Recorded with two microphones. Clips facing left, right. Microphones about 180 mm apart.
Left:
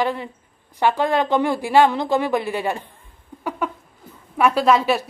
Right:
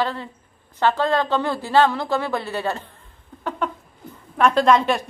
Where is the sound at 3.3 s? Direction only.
10° left (ahead or behind).